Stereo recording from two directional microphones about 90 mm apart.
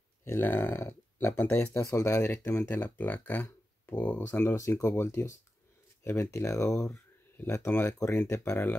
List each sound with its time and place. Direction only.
0.2 s speech: 25° left (ahead or behind)
1.8 s speech: 35° left (ahead or behind); by 4.2 s 20° left (ahead or behind)
4.3 s speech: 30° left (ahead or behind)
6.6 s speech: 5° left (ahead or behind)
7.8 s speech: 30° left (ahead or behind)